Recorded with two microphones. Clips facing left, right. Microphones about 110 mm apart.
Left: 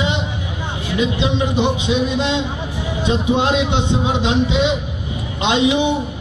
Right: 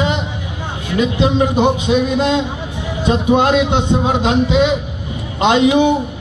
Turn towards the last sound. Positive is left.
turn(degrees=-45)  # may be behind; listen again after turning